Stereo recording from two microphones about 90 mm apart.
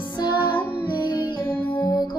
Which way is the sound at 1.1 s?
50° left (ahead or behind).